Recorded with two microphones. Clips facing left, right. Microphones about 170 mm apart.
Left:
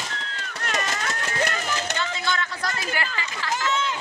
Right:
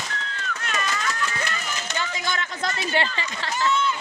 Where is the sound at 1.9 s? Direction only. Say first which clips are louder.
Left 1 dB; 15° right (ahead or behind).